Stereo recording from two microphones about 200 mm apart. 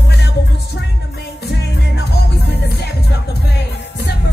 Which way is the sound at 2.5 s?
55° left (ahead or behind).